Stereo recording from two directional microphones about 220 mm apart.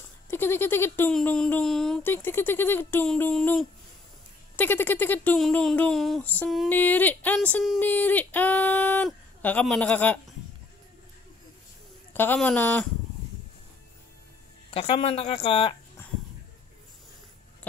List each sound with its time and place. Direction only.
0.3 s speech: 10° left (ahead or behind)
12.1 s speech: 10° left (ahead or behind)
14.7 s speech: 25° left (ahead or behind)
16.0 s a sound: 10° left (ahead or behind)